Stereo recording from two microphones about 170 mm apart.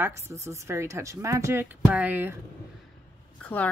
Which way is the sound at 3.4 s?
10° left (ahead or behind).